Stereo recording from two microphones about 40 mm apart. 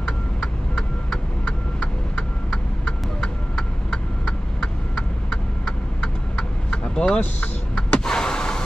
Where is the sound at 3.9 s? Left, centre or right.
Left.